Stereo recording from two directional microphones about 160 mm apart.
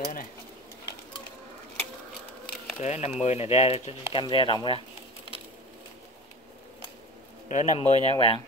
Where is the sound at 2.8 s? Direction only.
45° left (ahead or behind).